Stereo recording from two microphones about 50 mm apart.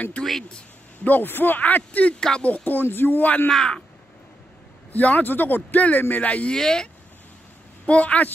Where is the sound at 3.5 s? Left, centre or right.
Centre.